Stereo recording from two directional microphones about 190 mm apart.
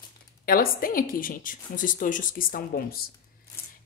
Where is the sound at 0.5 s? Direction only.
50° left (ahead or behind).